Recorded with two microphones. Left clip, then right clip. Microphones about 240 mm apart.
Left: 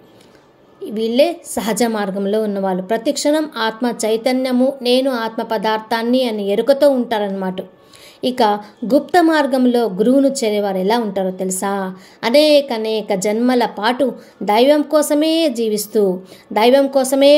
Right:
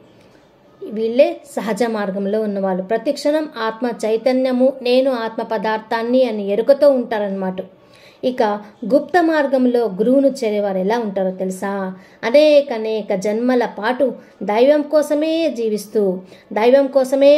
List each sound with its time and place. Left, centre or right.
0.9 s a woman's voice: left